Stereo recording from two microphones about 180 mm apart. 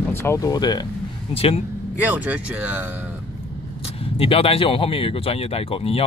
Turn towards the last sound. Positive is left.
turn(degrees=30)  # may be behind; listen again after turning